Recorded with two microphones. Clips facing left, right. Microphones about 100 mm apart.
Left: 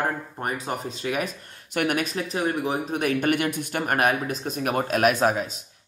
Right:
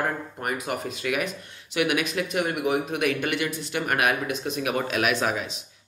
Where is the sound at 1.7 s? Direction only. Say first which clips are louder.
Even; 45° left (ahead or behind).